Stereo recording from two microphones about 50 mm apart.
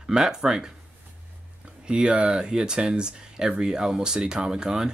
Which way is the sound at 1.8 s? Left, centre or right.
Centre.